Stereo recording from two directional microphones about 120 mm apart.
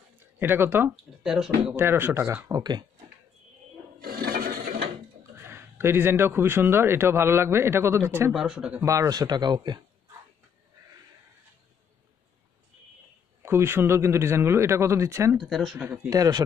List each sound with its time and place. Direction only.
0.4 s speech: 15° right (ahead or behind)
1.2 s speech: 5° right (ahead or behind)
1.8 s speech: 20° right (ahead or behind)
5.5 s speech: 20° right (ahead or behind)
8.3 s speech: 5° right (ahead or behind)
8.8 s speech: 25° right (ahead or behind)
13.4 s speech: 20° right (ahead or behind)
15.3 s speech: centre (ahead or behind)
15.8 s speech: 10° right (ahead or behind)
16.1 s speech: 30° right (ahead or behind)